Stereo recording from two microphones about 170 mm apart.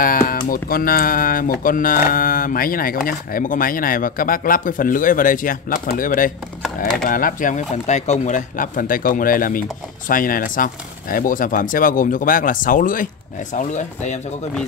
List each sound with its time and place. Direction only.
0.0 s speech: 55° left (ahead or behind)